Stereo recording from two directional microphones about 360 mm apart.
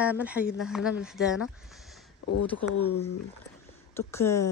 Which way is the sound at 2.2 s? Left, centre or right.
Left.